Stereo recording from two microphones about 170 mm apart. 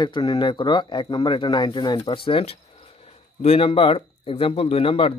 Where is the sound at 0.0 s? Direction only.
25° left (ahead or behind).